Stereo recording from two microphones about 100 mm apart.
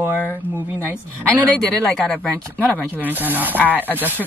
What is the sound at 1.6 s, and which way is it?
Speech, 5° left (ahead or behind).